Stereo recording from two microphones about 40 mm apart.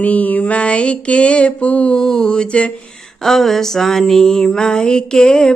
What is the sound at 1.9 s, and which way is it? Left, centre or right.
Mantra, centre.